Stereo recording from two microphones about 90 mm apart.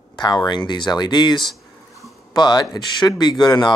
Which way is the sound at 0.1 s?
55° left (ahead or behind).